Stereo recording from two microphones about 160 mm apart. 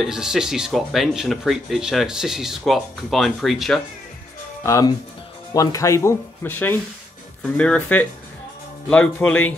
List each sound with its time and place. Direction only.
0.0 s speech: 5° right (ahead or behind)
4.6 s speech: 20° left (ahead or behind)